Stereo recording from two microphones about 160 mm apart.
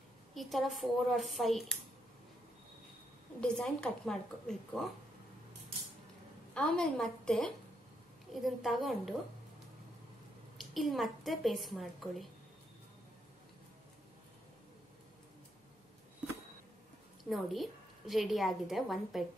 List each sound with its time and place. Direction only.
0.3 s a woman's voice: centre (ahead or behind)
3.3 s a woman's voice: 5° left (ahead or behind)
6.5 s a woman's voice: 5° left (ahead or behind)
10.6 s a woman's voice: centre (ahead or behind)
17.2 s a woman's voice: centre (ahead or behind)